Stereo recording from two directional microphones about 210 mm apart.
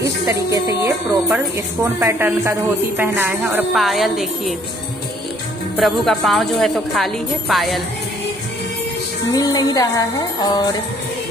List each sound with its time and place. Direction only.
0.3 s a woman's voice: 15° right (ahead or behind)
5.8 s speech: centre (ahead or behind)
9.3 s music: 15° left (ahead or behind)